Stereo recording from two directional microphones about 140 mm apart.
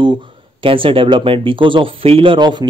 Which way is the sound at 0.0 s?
35° right (ahead or behind).